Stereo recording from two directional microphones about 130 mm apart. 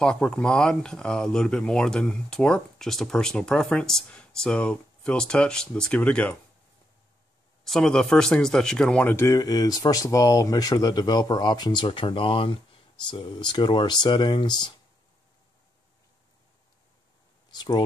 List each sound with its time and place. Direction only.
0.0 s speech: 5° left (ahead or behind)
7.6 s speech: 5° left (ahead or behind)
9.2 s speech: 25° left (ahead or behind)
17.5 s speech: 35° left (ahead or behind)